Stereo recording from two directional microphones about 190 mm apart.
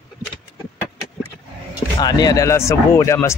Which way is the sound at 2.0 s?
20° left (ahead or behind).